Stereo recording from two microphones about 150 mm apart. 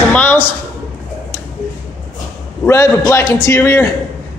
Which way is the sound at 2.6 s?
20° left (ahead or behind).